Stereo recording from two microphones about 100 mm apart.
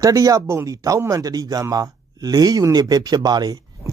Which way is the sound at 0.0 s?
35° right (ahead or behind).